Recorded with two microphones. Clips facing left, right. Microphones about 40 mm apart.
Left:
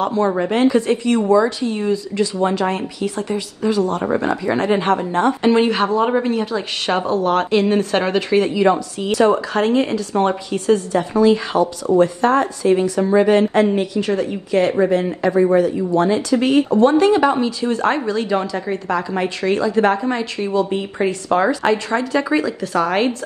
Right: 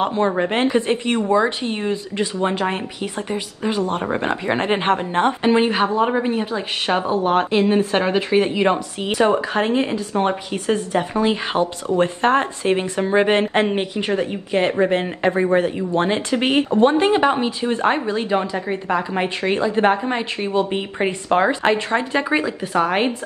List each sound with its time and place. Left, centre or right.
0.0 s a woman's voice: right
2.4 s a woman's voice: right
5.4 s speech: centre
7.1 s a woman's voice: right
8.4 s a woman's voice: right
9.2 s a woman's voice: right
19.2 s speech: right
20.3 s speech: right